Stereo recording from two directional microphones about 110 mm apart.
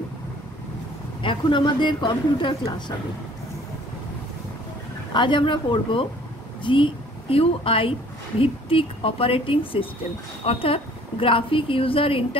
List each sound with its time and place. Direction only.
1.2 s speech: 50° left (ahead or behind)
5.1 s a woman's voice: 45° left (ahead or behind)